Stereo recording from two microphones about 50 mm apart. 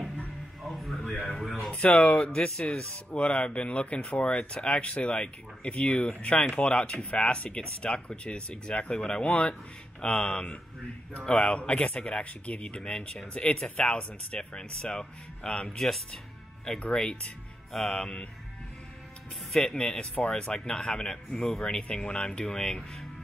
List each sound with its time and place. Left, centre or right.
0.7 s a sound: centre
1.7 s speech: left
2.1 s speech: centre
15.8 s speech: centre
16.9 s speech: centre
17.7 s speech: centre
19.8 s speech: left